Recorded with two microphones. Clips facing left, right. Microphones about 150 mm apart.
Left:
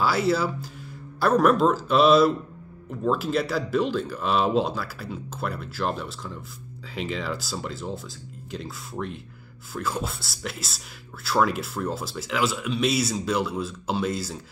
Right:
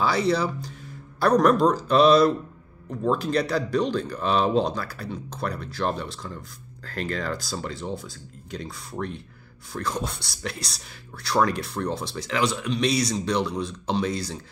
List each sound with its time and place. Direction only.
0.0 s speech: 5° left (ahead or behind)